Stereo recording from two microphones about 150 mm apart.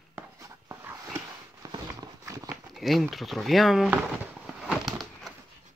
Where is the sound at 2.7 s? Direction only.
Centre (ahead or behind).